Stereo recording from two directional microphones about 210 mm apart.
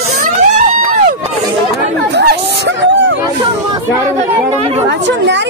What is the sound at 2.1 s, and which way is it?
Speech, 55° right (ahead or behind).